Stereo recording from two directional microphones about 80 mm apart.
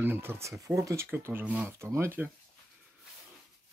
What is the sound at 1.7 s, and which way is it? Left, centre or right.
Speech, right.